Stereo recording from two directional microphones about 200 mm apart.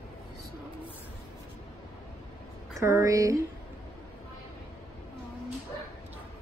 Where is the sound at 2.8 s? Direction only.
15° right (ahead or behind).